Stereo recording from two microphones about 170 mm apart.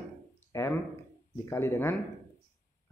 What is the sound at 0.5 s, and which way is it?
Speech, 15° left (ahead or behind).